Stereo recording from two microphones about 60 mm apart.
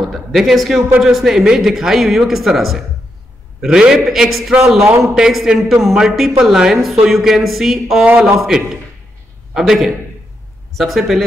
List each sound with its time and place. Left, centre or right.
0.0 s a woman's voice: centre
8.0 s a man's voice: centre
8.4 s a man's voice: centre